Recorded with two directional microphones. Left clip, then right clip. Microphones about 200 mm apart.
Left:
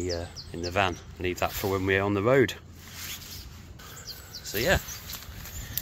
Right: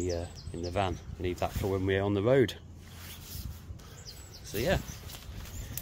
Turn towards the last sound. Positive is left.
turn(degrees=0)  # may be behind; listen again after turning